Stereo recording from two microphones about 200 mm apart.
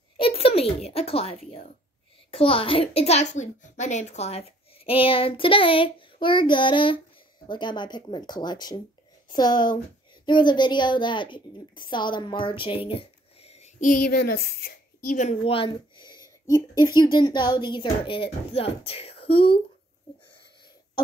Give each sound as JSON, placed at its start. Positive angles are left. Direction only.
{"t": 0.2, "sound": "a child's voice", "side_deg": 30}